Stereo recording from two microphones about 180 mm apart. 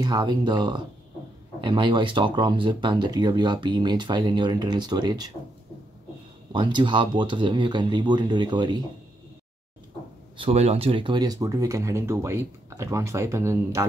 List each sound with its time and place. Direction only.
0.0 s speech: 25° right (ahead or behind)
6.5 s speech: 25° right (ahead or behind)
10.3 s speech: 30° right (ahead or behind); by 13.8 s 15° right (ahead or behind)